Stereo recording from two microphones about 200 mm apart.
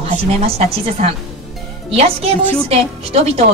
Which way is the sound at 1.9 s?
30° right (ahead or behind).